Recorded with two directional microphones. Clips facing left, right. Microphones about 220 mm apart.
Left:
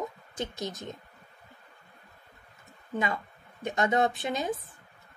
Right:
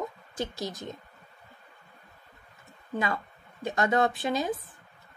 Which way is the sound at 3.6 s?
20° left (ahead or behind).